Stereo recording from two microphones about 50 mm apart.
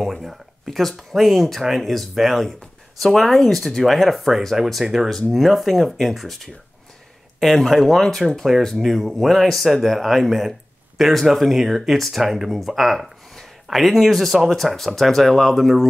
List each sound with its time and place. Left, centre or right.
0.0 s speech: centre